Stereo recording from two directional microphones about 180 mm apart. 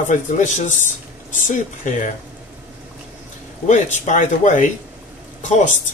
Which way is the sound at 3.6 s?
40° left (ahead or behind).